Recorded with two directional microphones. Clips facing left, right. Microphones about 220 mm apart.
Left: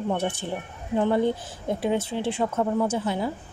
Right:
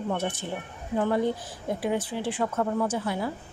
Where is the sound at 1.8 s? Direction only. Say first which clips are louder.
Left 3 dB; 25° left (ahead or behind).